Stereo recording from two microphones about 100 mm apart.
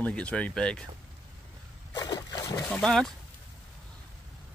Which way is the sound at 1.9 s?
40° left (ahead or behind).